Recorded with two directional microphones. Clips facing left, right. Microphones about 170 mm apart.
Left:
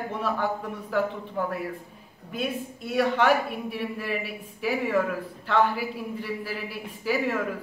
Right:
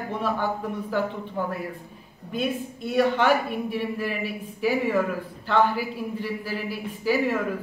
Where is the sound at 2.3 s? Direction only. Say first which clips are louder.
Right 3 dB; centre (ahead or behind).